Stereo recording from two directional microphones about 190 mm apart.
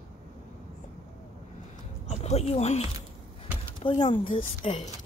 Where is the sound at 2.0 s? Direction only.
35° left (ahead or behind).